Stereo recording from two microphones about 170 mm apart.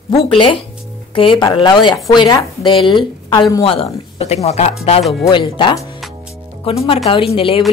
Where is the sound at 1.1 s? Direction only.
30° left (ahead or behind).